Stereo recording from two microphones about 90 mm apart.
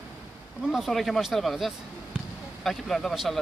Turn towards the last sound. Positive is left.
turn(degrees=0)  # may be behind; listen again after turning